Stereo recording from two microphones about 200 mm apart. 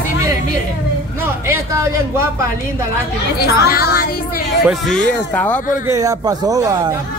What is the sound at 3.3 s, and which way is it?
Speech, 50° left (ahead or behind).